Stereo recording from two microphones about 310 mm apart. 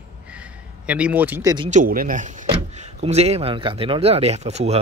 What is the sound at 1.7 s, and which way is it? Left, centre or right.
Speech, right.